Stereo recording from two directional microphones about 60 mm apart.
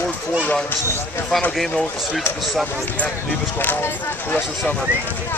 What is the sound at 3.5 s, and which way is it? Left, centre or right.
Speech, left.